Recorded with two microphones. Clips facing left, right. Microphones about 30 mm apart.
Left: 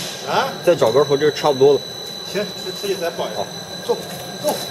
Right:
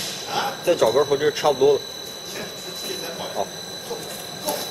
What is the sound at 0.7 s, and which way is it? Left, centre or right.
Speech, centre.